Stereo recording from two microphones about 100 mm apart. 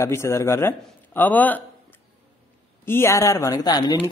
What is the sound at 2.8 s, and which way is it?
Speech, 25° left (ahead or behind).